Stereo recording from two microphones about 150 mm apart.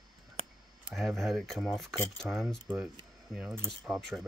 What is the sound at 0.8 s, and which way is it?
Speech, 5° right (ahead or behind).